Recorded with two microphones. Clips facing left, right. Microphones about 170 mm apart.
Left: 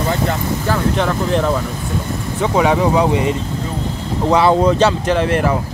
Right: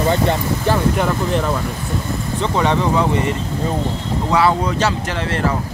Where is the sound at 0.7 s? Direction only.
5° right (ahead or behind).